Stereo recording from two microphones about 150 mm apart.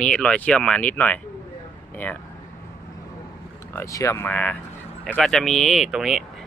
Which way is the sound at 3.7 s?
20° left (ahead or behind).